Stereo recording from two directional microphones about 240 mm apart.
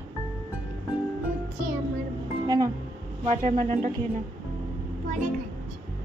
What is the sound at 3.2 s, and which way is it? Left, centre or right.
Speech, right.